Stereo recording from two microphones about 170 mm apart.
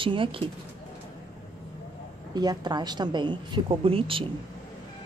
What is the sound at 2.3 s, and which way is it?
A woman's voice, 25° right (ahead or behind).